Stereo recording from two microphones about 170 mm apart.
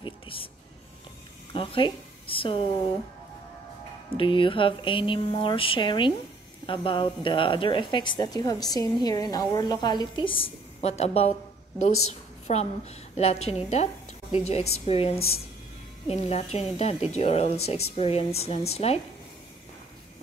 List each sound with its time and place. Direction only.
0.0 s music: 30° left (ahead or behind)
1.5 s a woman's voice: 30° left (ahead or behind)
4.2 s a woman's voice: 30° left (ahead or behind)